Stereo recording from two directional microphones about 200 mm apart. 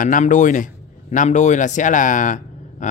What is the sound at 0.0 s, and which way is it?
Speech, 40° left (ahead or behind).